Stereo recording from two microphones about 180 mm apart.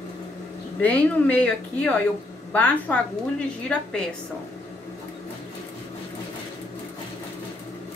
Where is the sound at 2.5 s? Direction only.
10° left (ahead or behind).